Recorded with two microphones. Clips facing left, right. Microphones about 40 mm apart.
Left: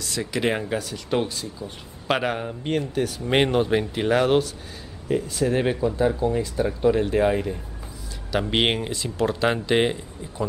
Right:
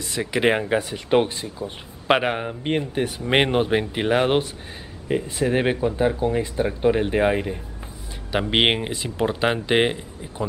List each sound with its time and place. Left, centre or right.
0.0 s speech: right